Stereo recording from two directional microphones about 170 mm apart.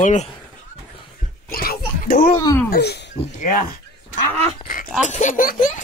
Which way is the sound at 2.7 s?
70° left (ahead or behind).